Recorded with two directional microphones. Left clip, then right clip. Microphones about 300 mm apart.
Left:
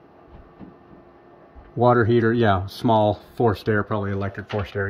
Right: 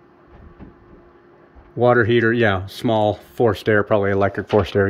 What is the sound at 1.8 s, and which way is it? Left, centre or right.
Speech, centre.